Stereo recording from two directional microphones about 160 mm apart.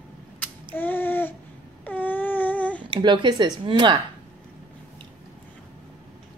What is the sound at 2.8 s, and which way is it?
A woman's voice, 30° right (ahead or behind).